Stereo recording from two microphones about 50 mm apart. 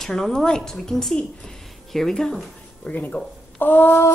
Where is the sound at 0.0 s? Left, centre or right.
Centre.